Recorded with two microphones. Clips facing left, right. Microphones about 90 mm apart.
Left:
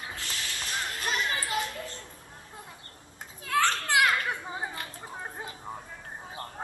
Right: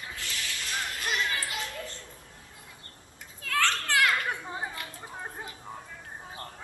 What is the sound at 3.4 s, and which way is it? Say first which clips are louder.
Children playing: left 2 dB; 20° left (ahead or behind).